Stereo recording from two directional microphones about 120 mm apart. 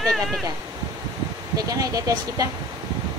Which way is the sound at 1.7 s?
30° right (ahead or behind).